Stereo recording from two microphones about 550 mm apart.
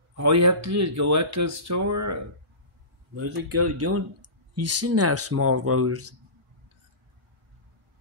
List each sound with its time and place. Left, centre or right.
0.1 s speech: right
3.2 s speech: right